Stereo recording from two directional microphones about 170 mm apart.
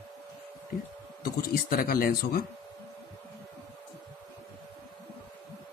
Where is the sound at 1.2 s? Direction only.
60° left (ahead or behind).